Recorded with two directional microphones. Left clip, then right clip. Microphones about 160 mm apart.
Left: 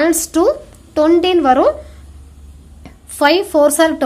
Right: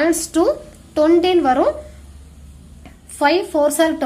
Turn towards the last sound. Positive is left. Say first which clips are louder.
# left 4 dB
turn(degrees=25)  # may be behind; listen again after turning